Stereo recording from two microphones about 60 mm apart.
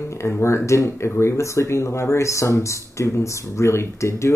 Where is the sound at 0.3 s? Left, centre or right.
Left.